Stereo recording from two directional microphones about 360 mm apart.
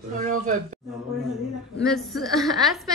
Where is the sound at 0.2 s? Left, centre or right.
Right.